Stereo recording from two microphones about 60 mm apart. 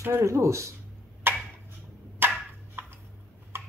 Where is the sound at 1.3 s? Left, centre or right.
Right.